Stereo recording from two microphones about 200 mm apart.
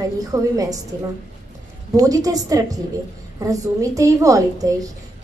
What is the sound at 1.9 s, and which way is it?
A woman's voice, 20° right (ahead or behind).